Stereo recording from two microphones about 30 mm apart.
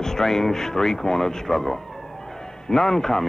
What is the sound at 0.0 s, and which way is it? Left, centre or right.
A man's voice, centre.